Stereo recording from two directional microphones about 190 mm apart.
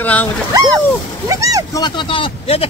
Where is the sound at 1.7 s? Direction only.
25° left (ahead or behind).